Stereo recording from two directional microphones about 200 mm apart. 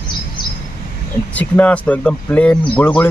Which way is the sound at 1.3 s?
5° left (ahead or behind).